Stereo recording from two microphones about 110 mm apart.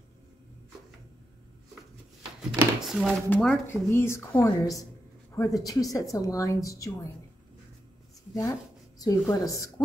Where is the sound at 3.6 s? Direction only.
20° left (ahead or behind).